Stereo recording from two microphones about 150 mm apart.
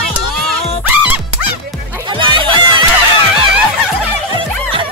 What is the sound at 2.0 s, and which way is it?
Music, 30° right (ahead or behind).